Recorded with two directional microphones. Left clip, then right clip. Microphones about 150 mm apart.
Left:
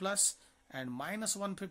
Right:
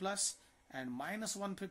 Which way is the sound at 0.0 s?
25° left (ahead or behind).